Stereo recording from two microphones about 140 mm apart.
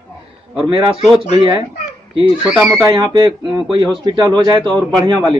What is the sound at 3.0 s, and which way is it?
A man's voice, 35° right (ahead or behind).